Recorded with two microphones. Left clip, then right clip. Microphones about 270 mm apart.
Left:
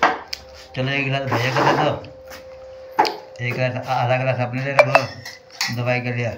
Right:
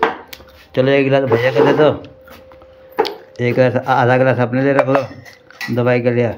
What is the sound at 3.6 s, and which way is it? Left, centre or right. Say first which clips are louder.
Speech: right 8 dB; centre.